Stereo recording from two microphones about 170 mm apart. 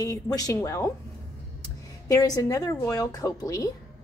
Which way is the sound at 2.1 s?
20° left (ahead or behind).